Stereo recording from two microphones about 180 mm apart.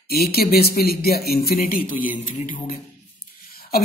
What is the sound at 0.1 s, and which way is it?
Speech, 60° left (ahead or behind).